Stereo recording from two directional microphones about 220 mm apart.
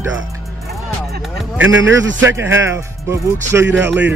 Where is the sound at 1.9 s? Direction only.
55° right (ahead or behind).